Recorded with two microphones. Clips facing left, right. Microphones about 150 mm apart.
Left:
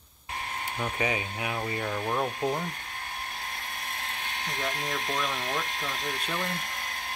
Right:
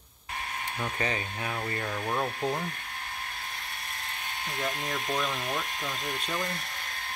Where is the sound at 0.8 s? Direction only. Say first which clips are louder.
Left 2 dB; 10° left (ahead or behind).